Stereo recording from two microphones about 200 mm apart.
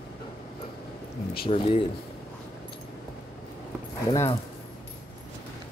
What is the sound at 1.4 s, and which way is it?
Speech, 30° left (ahead or behind).